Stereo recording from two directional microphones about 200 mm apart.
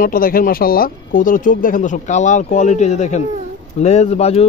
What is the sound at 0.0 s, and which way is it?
Speech, 45° left (ahead or behind).